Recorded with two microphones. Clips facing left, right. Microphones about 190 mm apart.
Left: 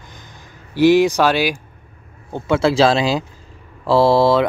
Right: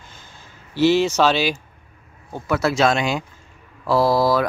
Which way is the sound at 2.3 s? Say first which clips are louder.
Left 5 dB; 25° left (ahead or behind).